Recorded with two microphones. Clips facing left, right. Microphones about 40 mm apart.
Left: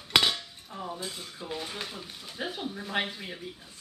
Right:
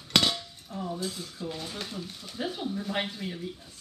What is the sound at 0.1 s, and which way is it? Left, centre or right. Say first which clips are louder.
Dishes: left 1 dB; centre.